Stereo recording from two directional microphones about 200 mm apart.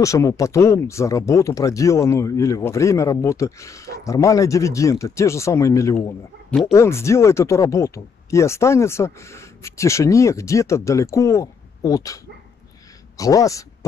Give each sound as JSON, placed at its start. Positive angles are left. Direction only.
{"t": 0.0, "sound": "speech", "side_deg": 15}
{"t": 13.2, "sound": "speech", "side_deg": 15}